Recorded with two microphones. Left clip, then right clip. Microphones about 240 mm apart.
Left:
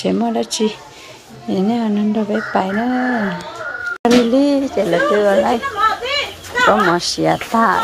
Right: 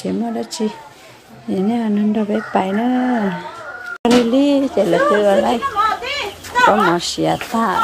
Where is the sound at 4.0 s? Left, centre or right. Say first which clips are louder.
Left 1 dB; centre.